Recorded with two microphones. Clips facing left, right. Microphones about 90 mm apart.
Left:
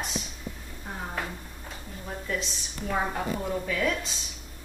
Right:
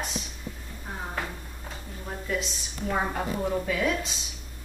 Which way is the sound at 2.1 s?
5° right (ahead or behind).